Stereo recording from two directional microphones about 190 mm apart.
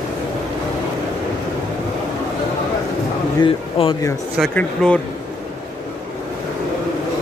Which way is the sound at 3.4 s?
30° left (ahead or behind).